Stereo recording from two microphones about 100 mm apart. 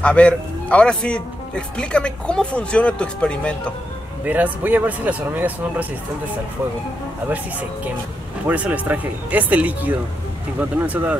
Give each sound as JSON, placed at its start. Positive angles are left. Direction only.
{"t": 0.0, "sound": "speech", "side_deg": 10}
{"t": 4.2, "sound": "speech", "side_deg": -15}
{"t": 8.5, "sound": "speech", "side_deg": -15}